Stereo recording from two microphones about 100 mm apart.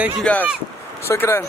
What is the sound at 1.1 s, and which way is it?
Speech, 25° left (ahead or behind).